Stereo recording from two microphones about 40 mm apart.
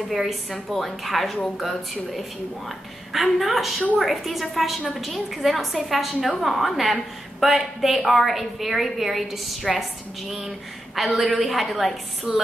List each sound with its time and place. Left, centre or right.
0.1 s a woman's voice: centre